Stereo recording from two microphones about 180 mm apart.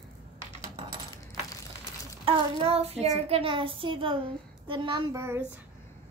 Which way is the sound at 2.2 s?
35° right (ahead or behind).